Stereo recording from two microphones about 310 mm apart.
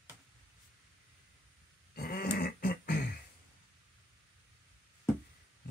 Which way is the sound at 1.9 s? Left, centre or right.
Left.